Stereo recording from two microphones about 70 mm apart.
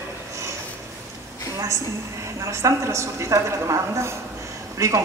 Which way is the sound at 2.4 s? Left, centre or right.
Right.